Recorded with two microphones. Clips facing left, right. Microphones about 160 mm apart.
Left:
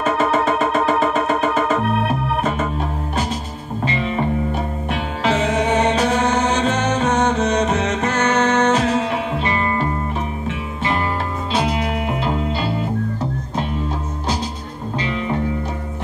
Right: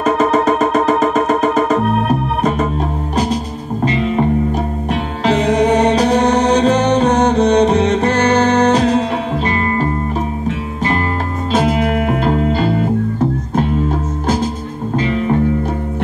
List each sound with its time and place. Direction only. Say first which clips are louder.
0.0 s music: right 4 dB; 40° right (ahead or behind)
3.8 s music: right 6 dB; 40° right (ahead or behind)
11.5 s music: right 6 dB; 50° right (ahead or behind)